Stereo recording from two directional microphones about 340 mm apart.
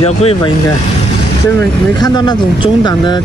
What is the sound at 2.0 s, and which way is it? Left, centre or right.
Speech, centre.